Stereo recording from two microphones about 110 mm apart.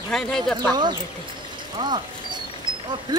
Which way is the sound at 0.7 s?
45° right (ahead or behind).